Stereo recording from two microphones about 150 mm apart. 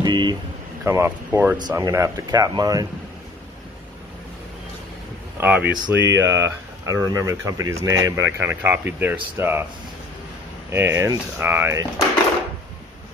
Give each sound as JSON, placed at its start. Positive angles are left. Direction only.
{"t": 0.0, "sound": "a sound", "side_deg": -30}
{"t": 0.8, "sound": "speech", "side_deg": -15}
{"t": 5.4, "sound": "speech", "side_deg": -10}
{"t": 10.7, "sound": "speech", "side_deg": -15}